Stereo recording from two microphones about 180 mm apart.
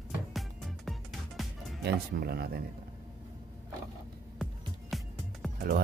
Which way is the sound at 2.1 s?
60° right (ahead or behind).